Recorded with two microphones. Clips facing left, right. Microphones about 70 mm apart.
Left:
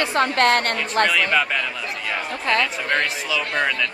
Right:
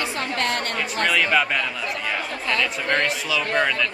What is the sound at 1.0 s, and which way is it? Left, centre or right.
Speech, centre.